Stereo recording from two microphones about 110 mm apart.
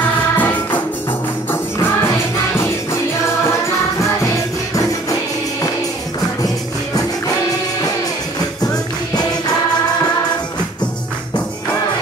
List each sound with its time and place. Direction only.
0.4 s music: 15° left (ahead or behind)